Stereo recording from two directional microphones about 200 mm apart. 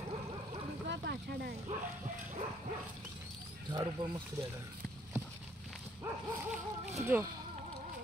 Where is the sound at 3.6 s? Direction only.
20° right (ahead or behind).